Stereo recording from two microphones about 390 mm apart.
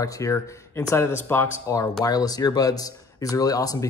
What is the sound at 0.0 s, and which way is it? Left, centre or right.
Speech, centre.